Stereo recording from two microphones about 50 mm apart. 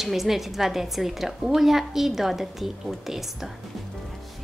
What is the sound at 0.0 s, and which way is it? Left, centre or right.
A woman's voice, centre.